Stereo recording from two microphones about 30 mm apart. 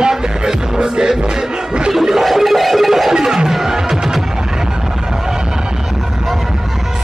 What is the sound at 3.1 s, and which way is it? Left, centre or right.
Music, right.